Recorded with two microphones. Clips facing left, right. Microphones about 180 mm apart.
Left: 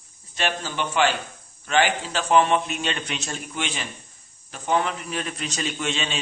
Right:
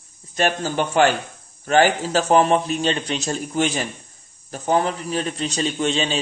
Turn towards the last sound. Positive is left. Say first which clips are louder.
# right 6 dB
turn(degrees=-35)  # may be behind; listen again after turning